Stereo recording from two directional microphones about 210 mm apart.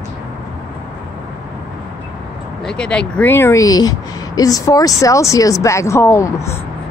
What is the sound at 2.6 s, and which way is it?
Speech, 5° left (ahead or behind).